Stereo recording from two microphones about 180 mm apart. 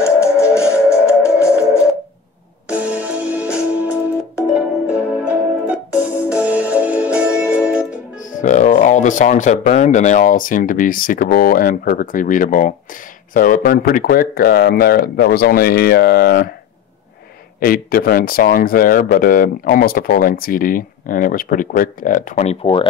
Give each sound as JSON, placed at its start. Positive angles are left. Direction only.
{"t": 0.0, "sound": "music", "side_deg": 15}
{"t": 2.7, "sound": "music", "side_deg": -10}
{"t": 5.2, "sound": "music", "side_deg": -5}
{"t": 8.4, "sound": "speech", "side_deg": 45}
{"t": 17.6, "sound": "speech", "side_deg": 55}